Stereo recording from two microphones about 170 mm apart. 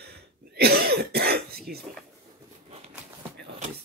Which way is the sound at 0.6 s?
65° right (ahead or behind).